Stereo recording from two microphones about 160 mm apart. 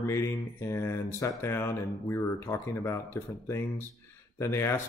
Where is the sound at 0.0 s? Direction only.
20° left (ahead or behind).